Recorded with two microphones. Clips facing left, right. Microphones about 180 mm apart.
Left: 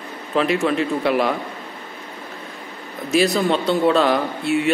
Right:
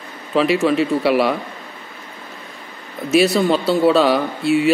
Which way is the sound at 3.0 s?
Centre (ahead or behind).